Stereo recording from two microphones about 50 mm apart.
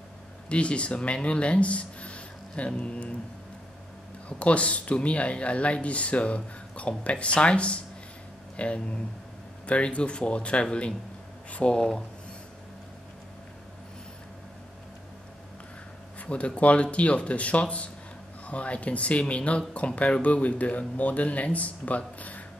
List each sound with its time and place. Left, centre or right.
0.5 s speech: left
4.3 s speech: left
16.2 s speech: left